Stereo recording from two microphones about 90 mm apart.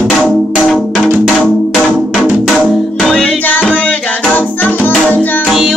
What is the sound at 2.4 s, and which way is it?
Music, centre (ahead or behind).